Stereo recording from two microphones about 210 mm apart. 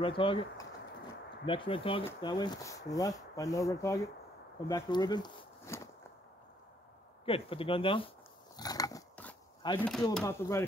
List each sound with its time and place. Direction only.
0.0 s speech: 25° left (ahead or behind)
7.2 s speech: 25° left (ahead or behind)
8.5 s a sound: 15° left (ahead or behind)
9.6 s speech: 20° left (ahead or behind)